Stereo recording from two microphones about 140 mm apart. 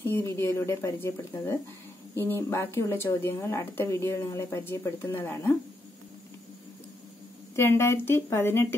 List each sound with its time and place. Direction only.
0.0 s speech: 20° left (ahead or behind)
7.5 s speech: 20° left (ahead or behind)